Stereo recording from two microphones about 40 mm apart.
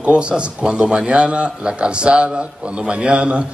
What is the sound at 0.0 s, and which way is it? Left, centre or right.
Speech, right.